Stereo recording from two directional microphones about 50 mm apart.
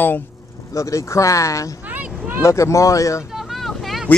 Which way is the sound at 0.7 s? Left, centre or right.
Left.